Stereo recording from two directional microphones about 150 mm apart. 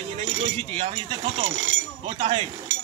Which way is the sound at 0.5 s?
45° right (ahead or behind).